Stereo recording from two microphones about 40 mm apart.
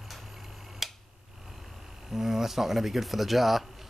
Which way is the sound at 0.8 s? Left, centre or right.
Centre.